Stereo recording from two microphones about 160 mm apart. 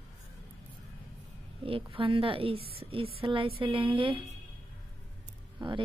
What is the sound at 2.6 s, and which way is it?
Speech, 70° right (ahead or behind).